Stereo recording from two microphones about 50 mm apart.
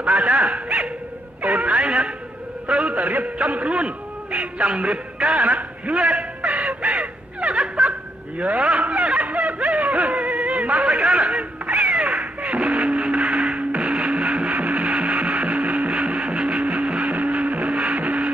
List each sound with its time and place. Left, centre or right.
0.0 s a man's voice: right
5.2 s a man's voice: right
6.7 s snicker: right
17.1 s music: right